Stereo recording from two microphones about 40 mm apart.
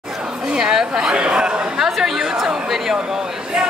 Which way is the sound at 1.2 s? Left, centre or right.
Right.